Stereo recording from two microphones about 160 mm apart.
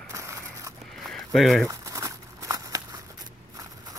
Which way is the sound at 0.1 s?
20° right (ahead or behind).